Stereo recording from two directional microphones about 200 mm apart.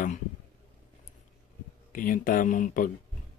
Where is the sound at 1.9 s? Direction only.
40° left (ahead or behind).